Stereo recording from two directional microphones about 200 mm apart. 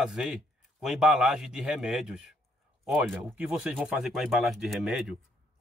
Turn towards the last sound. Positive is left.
turn(degrees=0)  # may be behind; listen again after turning